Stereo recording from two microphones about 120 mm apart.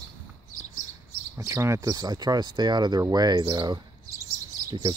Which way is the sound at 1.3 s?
25° right (ahead or behind).